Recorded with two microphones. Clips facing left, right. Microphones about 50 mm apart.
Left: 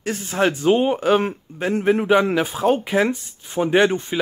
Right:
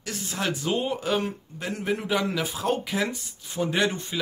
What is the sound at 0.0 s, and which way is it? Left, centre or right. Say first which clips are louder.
Speech: left 9 dB; left.